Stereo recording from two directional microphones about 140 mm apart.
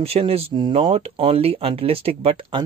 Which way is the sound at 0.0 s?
45° right (ahead or behind).